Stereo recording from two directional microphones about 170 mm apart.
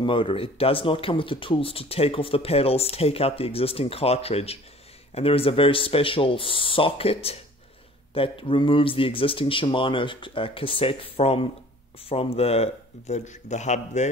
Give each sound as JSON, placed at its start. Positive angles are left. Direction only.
{"t": 0.0, "sound": "speech", "side_deg": 30}